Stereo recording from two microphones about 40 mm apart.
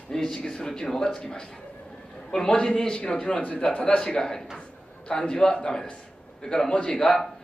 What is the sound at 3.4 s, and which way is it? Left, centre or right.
Speech, left.